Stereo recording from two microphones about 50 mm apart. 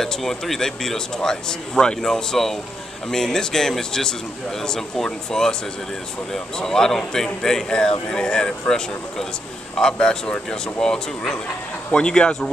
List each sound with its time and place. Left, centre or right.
0.0 s a man's voice: centre